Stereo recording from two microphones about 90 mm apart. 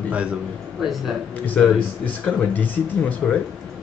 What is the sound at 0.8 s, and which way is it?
Speech, centre (ahead or behind).